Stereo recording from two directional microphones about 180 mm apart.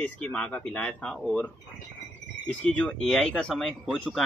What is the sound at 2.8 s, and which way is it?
Speech, 5° left (ahead or behind).